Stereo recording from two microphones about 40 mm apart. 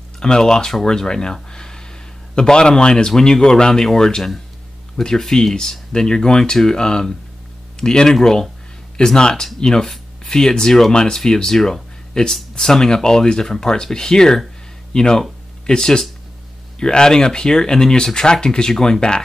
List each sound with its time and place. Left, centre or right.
0.2 s speech: centre